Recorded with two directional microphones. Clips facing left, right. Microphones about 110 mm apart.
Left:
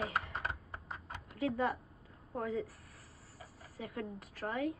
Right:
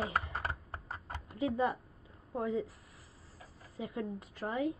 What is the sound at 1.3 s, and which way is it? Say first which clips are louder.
Speech: right 2 dB; 20° right (ahead or behind).